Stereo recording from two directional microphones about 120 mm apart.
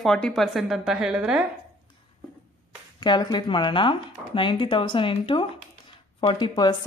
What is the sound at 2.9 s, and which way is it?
Speech, 35° left (ahead or behind).